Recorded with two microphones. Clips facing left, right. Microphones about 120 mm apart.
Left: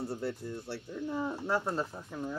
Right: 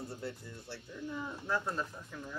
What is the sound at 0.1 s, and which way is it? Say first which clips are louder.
Speech: left 7 dB; 60° left (ahead or behind).